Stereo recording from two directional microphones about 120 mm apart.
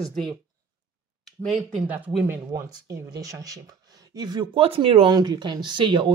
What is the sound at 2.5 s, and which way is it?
Speech, 30° right (ahead or behind).